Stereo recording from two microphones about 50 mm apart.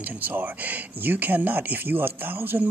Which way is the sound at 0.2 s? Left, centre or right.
Right.